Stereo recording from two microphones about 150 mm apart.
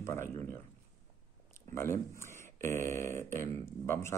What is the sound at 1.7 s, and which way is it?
Speech, 15° left (ahead or behind).